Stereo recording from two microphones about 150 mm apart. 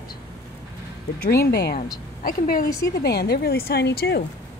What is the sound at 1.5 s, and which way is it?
Speech, 90° left.